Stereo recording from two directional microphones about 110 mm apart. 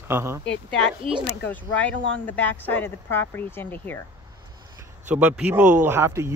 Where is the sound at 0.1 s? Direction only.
25° right (ahead or behind).